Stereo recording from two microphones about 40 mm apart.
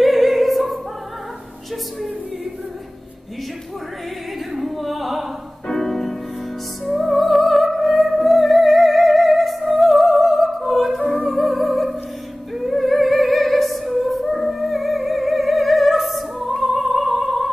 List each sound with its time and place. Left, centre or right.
0.0 s opera: centre
4.6 s opera: centre
5.7 s music: centre
12.7 s opera: centre
13.9 s music: centre
14.6 s opera: centre